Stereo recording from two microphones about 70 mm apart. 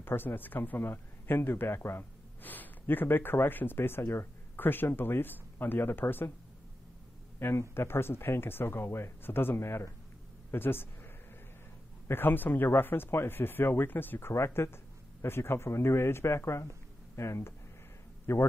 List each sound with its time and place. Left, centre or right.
0.0 s speech: left
7.3 s a man's voice: left
12.1 s speech: left
14.3 s a man's voice: left